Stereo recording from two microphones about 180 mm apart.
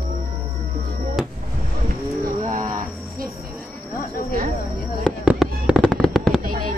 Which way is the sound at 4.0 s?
55° left (ahead or behind).